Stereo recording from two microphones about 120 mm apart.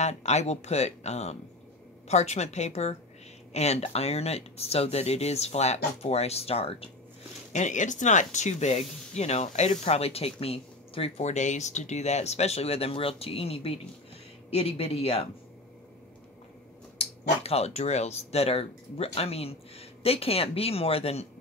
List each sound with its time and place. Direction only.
0.0 s a woman's voice: 70° left (ahead or behind)
7.5 s speech: 90° left; by 15.2 s 55° left (ahead or behind)
17.0 s speech: 55° left (ahead or behind)